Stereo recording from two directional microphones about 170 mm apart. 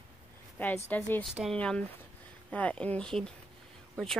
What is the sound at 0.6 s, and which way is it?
Speech, 10° left (ahead or behind).